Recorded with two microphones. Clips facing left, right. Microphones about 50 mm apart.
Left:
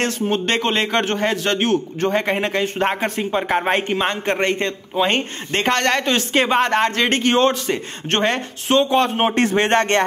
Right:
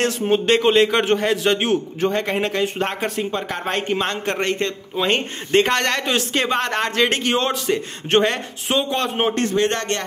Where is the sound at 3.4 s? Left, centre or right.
Left.